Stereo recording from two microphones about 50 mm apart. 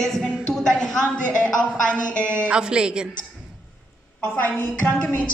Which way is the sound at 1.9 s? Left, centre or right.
Left.